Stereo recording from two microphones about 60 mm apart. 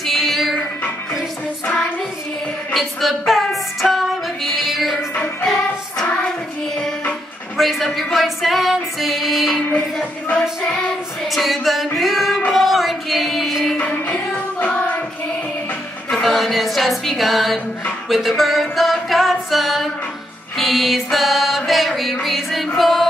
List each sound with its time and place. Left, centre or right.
0.0 s music: centre
2.7 s music: centre
5.4 s music: centre
7.5 s music: centre
11.2 s music: centre
13.7 s music: left
16.1 s music: centre